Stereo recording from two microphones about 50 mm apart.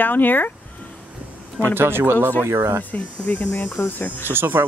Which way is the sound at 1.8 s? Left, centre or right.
Right.